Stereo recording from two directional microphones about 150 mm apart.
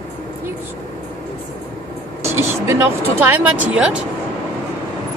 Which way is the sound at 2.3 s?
15° right (ahead or behind).